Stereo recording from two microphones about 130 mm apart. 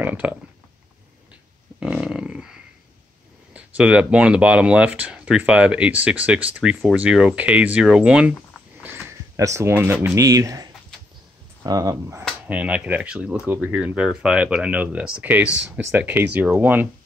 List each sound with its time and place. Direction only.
0.0 s speech: 15° right (ahead or behind)
1.8 s dog: 5° right (ahead or behind)
3.5 s speech: 10° right (ahead or behind)
8.8 s a sound: 15° right (ahead or behind)
9.4 s speech: 20° right (ahead or behind)
12.4 s speech: 10° right (ahead or behind)